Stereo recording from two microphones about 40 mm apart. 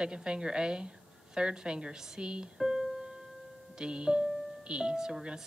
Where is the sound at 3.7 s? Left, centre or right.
Right.